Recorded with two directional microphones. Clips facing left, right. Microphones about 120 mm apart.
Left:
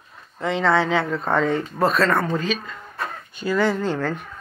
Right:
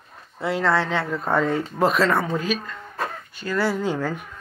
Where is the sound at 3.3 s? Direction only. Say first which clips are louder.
Left 4 dB; 15° left (ahead or behind).